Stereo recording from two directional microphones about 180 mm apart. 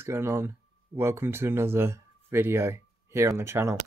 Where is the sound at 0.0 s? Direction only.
15° right (ahead or behind).